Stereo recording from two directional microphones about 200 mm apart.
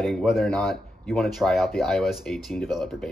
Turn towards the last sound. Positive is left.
turn(degrees=0)  # may be behind; listen again after turning